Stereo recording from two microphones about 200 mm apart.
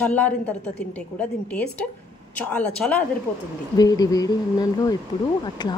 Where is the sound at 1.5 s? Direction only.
5° left (ahead or behind).